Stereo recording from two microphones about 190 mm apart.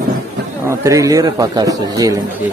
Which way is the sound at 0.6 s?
15° right (ahead or behind).